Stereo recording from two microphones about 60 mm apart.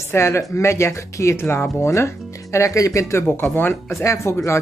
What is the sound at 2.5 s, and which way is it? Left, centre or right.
Speech, left.